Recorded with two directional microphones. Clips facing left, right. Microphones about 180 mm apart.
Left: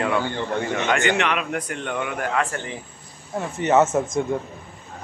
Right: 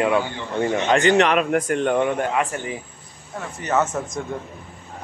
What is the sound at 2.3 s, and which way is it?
Speech, 15° right (ahead or behind).